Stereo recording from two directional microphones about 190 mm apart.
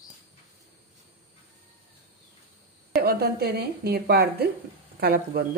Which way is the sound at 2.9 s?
50° right (ahead or behind).